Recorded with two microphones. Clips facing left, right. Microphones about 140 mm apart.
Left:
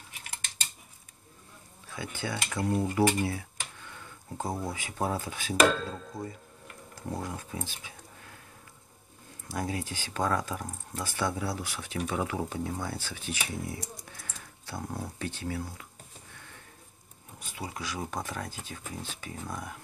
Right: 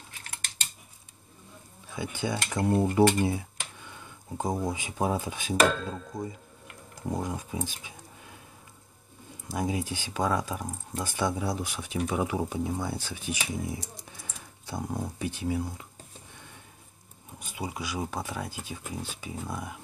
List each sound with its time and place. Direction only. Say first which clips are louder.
1.9 s speech: right 4 dB; 15° right (ahead or behind)
9.5 s speech: right 3 dB; 15° right (ahead or behind)
17.4 s speech: right 3 dB; 15° right (ahead or behind)